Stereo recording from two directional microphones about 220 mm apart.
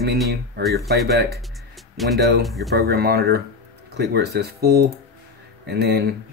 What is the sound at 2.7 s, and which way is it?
Speech, 45° right (ahead or behind).